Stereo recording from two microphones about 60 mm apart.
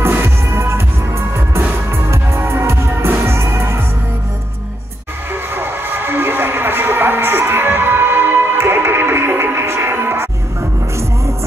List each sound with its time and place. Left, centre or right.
0.0 s music: right
1.9 s music: right
5.3 s music: right